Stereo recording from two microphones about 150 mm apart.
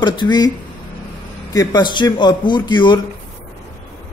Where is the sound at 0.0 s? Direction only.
30° left (ahead or behind).